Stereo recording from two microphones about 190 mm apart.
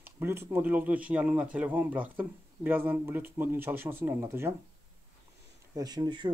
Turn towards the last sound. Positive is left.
turn(degrees=-25)  # may be behind; listen again after turning